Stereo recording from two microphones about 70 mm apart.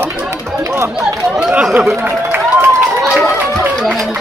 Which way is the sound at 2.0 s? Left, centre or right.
Right.